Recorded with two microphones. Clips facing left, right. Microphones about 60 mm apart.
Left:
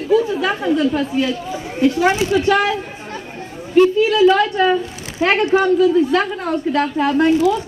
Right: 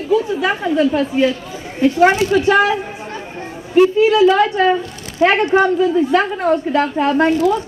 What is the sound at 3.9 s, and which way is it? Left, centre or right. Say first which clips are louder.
A woman's voice: right 2 dB; right.